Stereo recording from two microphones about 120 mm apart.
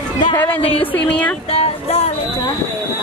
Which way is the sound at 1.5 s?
55° left (ahead or behind).